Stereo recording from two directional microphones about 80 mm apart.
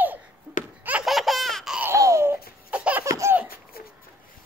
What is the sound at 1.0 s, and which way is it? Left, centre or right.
Laughter, centre.